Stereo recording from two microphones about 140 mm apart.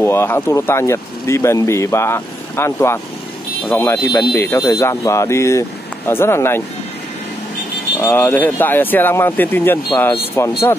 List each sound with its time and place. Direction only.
0.0 s speech: 15° left (ahead or behind)
8.0 s speech: 15° left (ahead or behind)